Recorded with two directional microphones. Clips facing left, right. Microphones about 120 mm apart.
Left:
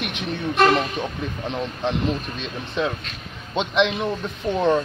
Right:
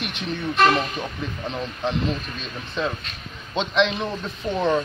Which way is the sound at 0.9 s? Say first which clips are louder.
Left 2 dB; 15° left (ahead or behind).